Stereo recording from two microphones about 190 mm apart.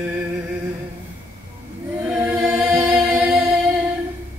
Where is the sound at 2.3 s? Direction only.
5° right (ahead or behind).